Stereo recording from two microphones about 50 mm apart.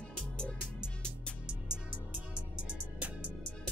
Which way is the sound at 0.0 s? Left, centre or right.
Left.